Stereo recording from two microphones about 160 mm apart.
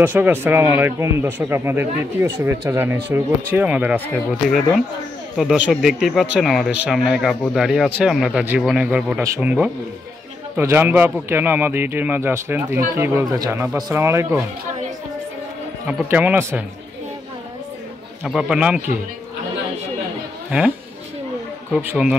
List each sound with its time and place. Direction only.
0.0 s speech: 10° right (ahead or behind)
5.4 s speech: centre (ahead or behind)
15.9 s speech: 10° right (ahead or behind)
18.2 s speech: 5° right (ahead or behind)
21.8 s speech: 5° right (ahead or behind)